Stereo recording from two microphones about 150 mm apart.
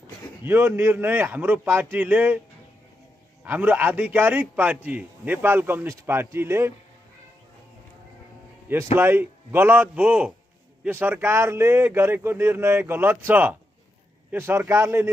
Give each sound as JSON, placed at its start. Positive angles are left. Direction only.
{"t": 0.4, "sound": "a man's voice", "side_deg": -15}
{"t": 3.4, "sound": "a man's voice", "side_deg": -10}
{"t": 8.9, "sound": "a man's voice", "side_deg": -15}